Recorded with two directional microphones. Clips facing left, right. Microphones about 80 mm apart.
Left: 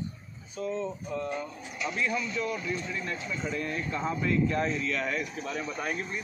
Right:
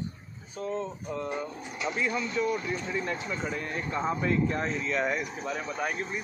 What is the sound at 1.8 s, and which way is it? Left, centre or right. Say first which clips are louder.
Speech: right 1 dB; right.